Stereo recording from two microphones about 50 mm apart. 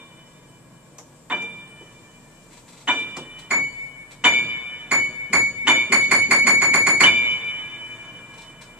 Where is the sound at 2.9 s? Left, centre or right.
Right.